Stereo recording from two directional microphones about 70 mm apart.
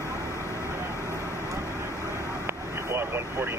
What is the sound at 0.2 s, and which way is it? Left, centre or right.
Vehicle, left.